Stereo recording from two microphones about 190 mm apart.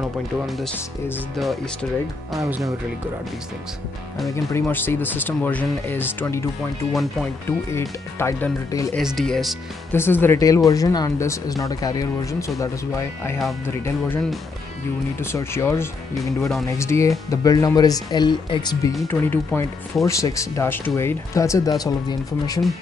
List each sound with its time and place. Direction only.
0.7 s speech: 10° left (ahead or behind)
1.4 s speech: centre (ahead or behind)
2.4 s speech: 15° right (ahead or behind)
4.5 s speech: 10° left (ahead or behind)
6.9 s speech: centre (ahead or behind)
7.4 s speech: 15° left (ahead or behind)
8.9 s speech: centre (ahead or behind)
9.9 s speech: 10° left (ahead or behind)